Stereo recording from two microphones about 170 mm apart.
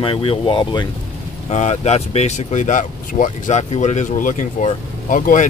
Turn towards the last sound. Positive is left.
turn(degrees=50)  # may be behind; listen again after turning